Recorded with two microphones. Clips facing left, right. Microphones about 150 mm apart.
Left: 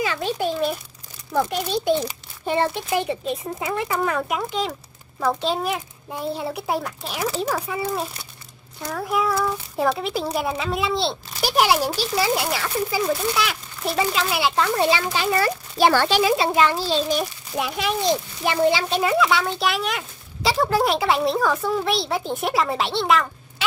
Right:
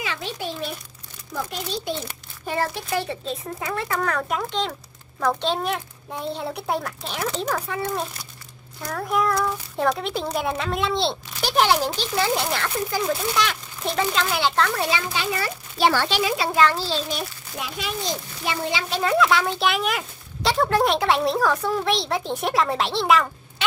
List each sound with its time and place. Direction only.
0.0 s a sound: 45° left (ahead or behind)
1.3 s a child's voice: 60° left (ahead or behind)
2.4 s speech: 25° left (ahead or behind); by 14.7 s 10° left (ahead or behind)
14.8 s a child's voice: 30° left (ahead or behind)
15.3 s a child's voice: 50° left (ahead or behind)
16.3 s speech: 25° left (ahead or behind)
19.0 s speech: centre (ahead or behind)